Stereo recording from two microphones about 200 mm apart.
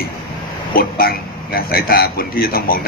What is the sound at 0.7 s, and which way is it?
A man's voice, 50° left (ahead or behind).